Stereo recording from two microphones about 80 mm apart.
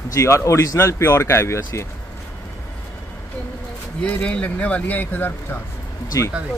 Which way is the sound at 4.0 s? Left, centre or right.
Centre.